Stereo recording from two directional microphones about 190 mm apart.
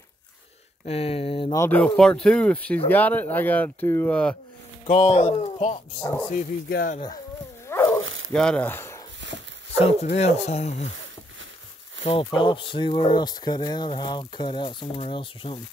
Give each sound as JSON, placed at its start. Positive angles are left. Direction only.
{"t": 0.8, "sound": "speech", "side_deg": 30}
{"t": 1.5, "sound": "speech", "side_deg": 10}
{"t": 4.8, "sound": "speech", "side_deg": 30}
{"t": 5.9, "sound": "speech", "side_deg": 10}
{"t": 6.3, "sound": "speech", "side_deg": 45}
{"t": 7.6, "sound": "dog", "side_deg": 15}
{"t": 8.0, "sound": "dog", "side_deg": -90}
{"t": 8.3, "sound": "speech", "side_deg": 5}
{"t": 9.2, "sound": "dog", "side_deg": -70}
{"t": 9.8, "sound": "speech", "side_deg": 35}
{"t": 12.0, "sound": "speech", "side_deg": 25}